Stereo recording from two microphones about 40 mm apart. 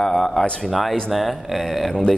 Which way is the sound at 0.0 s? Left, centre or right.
Centre.